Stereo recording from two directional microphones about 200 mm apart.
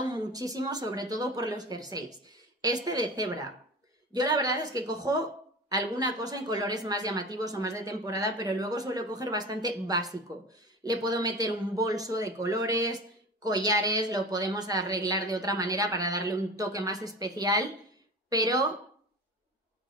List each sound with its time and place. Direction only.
0.1 s a woman's voice: 20° right (ahead or behind)